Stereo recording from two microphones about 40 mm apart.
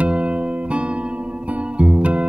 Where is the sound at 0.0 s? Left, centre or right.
Right.